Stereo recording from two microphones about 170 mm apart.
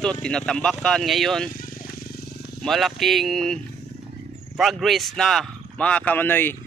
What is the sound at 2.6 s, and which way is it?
Speech, centre (ahead or behind).